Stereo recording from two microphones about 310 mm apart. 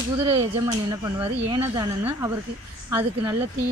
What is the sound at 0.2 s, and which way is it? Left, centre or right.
Speech, centre.